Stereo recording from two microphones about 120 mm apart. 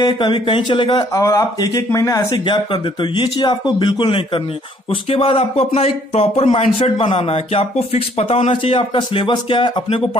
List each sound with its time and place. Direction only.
0.0 s music: 40° left (ahead or behind)
1.1 s speech: 30° left (ahead or behind)
2.3 s a man's voice: 40° left (ahead or behind)
8.9 s music: 40° left (ahead or behind)